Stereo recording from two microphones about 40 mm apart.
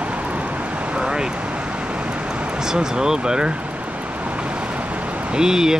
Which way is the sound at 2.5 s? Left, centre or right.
Centre.